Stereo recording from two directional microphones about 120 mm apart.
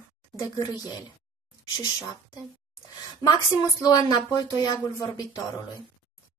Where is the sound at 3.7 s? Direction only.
30° left (ahead or behind).